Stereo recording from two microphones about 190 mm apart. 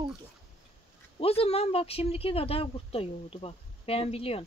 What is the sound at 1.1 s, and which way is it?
Speech, 30° left (ahead or behind).